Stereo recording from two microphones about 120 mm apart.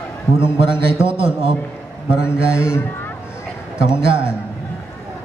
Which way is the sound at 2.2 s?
20° left (ahead or behind).